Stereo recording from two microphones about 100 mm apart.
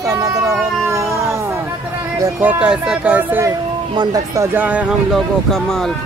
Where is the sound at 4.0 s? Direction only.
40° right (ahead or behind).